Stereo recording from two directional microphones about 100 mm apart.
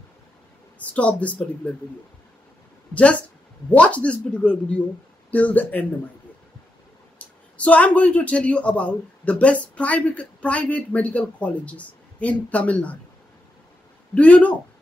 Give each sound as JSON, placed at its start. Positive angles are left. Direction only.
{"t": 0.7, "sound": "speech", "side_deg": 15}
{"t": 2.9, "sound": "speech", "side_deg": 10}
{"t": 7.2, "sound": "speech", "side_deg": 15}
{"t": 14.1, "sound": "speech", "side_deg": 15}